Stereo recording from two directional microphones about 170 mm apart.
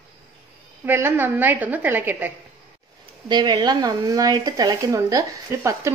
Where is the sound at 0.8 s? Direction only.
10° right (ahead or behind).